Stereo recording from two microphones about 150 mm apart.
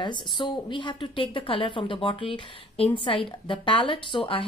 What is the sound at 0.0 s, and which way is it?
A woman's voice, 30° left (ahead or behind).